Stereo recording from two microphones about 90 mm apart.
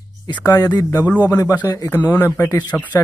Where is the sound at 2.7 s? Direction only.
20° left (ahead or behind).